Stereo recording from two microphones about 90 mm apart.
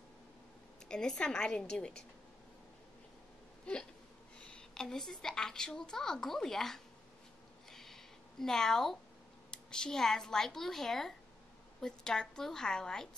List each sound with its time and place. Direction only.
0.8 s a woman's voice: 10° left (ahead or behind)
4.4 s a woman's voice: 10° left (ahead or behind)
7.7 s a sound: 5° left (ahead or behind)
9.5 s a woman's voice: 10° left (ahead or behind)